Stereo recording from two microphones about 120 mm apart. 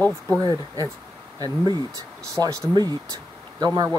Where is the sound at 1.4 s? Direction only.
30° right (ahead or behind).